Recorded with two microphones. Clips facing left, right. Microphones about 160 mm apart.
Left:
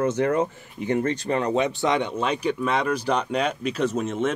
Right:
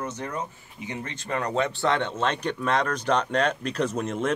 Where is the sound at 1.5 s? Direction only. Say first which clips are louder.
Right 1 dB; 15° left (ahead or behind).